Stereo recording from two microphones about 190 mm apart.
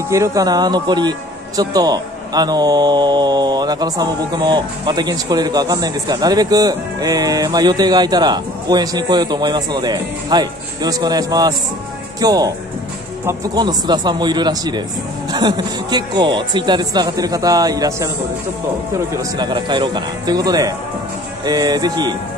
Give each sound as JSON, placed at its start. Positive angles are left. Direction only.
{"t": 0.1, "sound": "speech", "side_deg": -15}
{"t": 19.3, "sound": "speech", "side_deg": -25}